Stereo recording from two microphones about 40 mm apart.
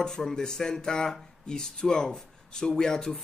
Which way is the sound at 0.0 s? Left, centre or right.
Centre.